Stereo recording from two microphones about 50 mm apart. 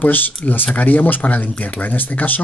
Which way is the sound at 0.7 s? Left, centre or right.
Left.